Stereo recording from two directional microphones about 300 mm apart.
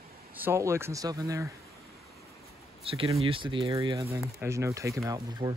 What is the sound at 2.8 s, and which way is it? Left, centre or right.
Speech, centre.